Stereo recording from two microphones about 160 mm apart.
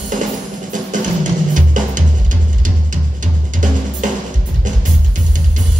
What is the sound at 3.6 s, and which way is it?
Drum, 55° right (ahead or behind).